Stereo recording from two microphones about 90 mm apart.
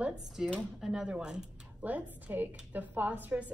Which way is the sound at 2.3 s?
20° right (ahead or behind).